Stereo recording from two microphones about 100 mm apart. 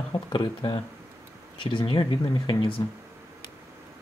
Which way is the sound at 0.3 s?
55° left (ahead or behind).